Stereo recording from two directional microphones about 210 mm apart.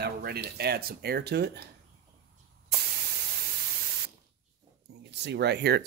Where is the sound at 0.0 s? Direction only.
50° right (ahead or behind).